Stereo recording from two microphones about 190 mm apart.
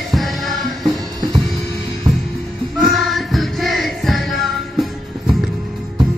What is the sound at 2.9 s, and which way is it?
Music, centre (ahead or behind).